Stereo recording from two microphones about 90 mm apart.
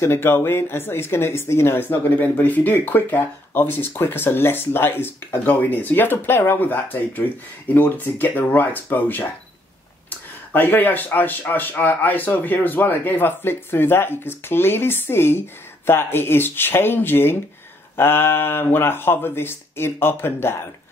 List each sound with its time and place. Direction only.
0.0 s speech: 25° left (ahead or behind)